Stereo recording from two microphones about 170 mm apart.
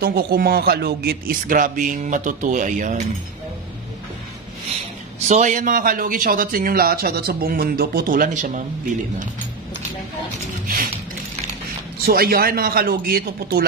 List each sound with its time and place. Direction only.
0.0 s speech: 60° right (ahead or behind)
5.3 s speech: 45° right (ahead or behind)
12.1 s speech: 60° right (ahead or behind)